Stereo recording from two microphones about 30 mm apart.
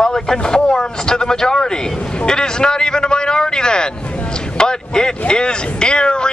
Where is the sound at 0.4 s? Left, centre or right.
Left.